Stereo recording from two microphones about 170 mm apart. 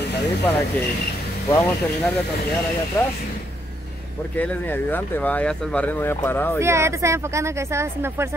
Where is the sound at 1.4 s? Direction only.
15° left (ahead or behind).